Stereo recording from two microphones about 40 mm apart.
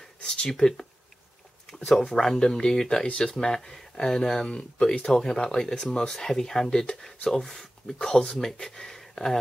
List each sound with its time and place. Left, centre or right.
0.2 s speech: left
0.5 s speech: centre
1.9 s speech: centre
4.5 s speech: left